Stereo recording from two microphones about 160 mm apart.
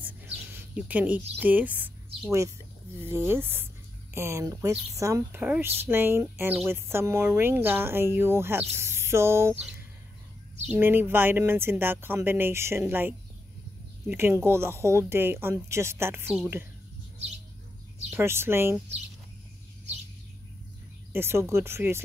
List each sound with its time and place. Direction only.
0.0 s a sound: 10° right (ahead or behind)
3.0 s a woman's voice: 15° right (ahead or behind)
10.7 s a woman's voice: 15° right (ahead or behind)
18.1 s a woman's voice: 15° right (ahead or behind)
21.1 s a woman's voice: 15° right (ahead or behind)